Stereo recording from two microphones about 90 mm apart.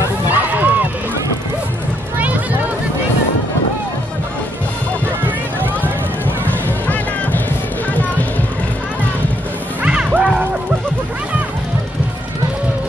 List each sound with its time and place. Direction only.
0.3 s run: 20° right (ahead or behind)
5.2 s run: 20° right (ahead or behind)
7.9 s music: 15° left (ahead or behind)
9.8 s music: 10° right (ahead or behind)